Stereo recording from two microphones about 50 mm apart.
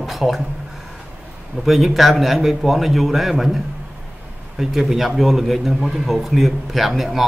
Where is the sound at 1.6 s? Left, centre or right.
Centre.